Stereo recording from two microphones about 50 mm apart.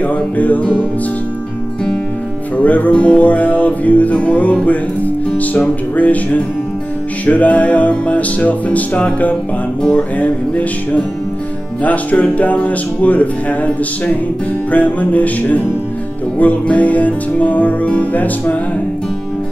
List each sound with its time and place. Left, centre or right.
0.0 s music: left
2.5 s music: left